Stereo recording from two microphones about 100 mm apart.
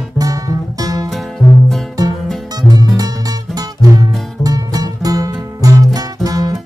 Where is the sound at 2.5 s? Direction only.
40° right (ahead or behind).